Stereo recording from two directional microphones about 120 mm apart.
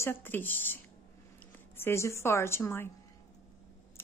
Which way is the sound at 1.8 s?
20° left (ahead or behind).